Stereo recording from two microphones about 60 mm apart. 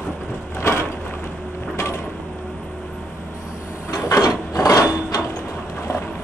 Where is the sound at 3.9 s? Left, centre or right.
Left.